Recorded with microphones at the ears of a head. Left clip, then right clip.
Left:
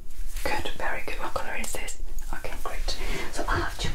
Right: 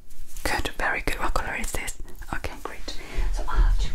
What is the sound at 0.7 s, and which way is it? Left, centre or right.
Whispering, right.